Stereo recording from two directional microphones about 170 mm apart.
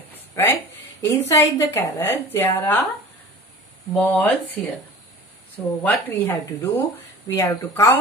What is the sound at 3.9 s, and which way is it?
Speech, 10° left (ahead or behind).